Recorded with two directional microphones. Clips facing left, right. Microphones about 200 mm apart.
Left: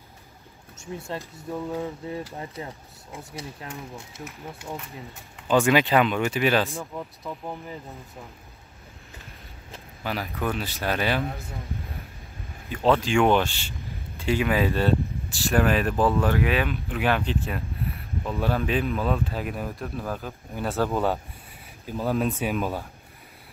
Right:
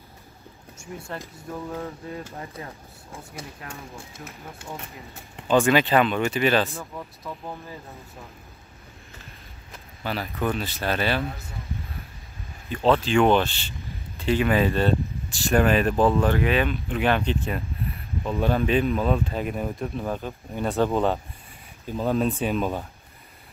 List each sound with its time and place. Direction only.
1.6 s speech: 15° left (ahead or behind)
4.2 s speech: 15° left (ahead or behind)
10.0 s speech: 10° left (ahead or behind)
12.6 s speech: 10° left (ahead or behind)